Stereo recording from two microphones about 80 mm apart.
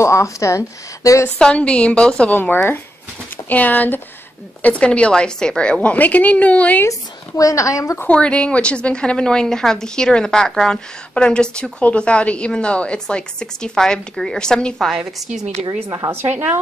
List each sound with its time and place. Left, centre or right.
0.0 s speech: left
1.4 s a woman's voice: centre
6.9 s speech: left
8.1 s a woman's voice: centre
15.0 s a woman's voice: centre
16.1 s speech: right